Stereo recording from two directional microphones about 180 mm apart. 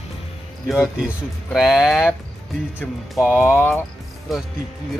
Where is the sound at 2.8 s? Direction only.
10° left (ahead or behind).